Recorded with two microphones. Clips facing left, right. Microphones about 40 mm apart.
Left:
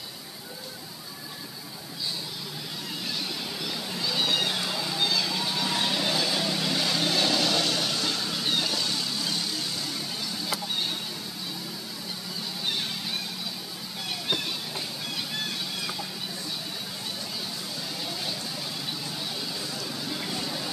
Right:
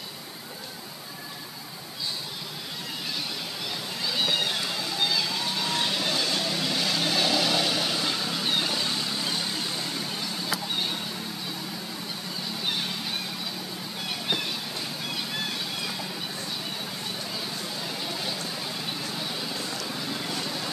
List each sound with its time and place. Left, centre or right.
4.0 s vehicle: centre; by 9.8 s right
20.1 s vehicle: centre